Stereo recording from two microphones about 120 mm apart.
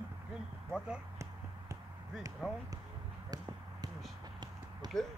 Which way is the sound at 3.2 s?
35° right (ahead or behind).